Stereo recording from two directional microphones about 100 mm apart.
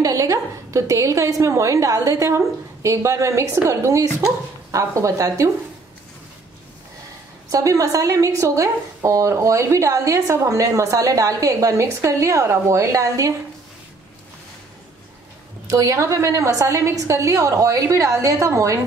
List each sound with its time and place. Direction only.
0.0 s a woman's voice: 35° right (ahead or behind)
7.4 s a woman's voice: 35° right (ahead or behind)
15.6 s a woman's voice: 35° right (ahead or behind)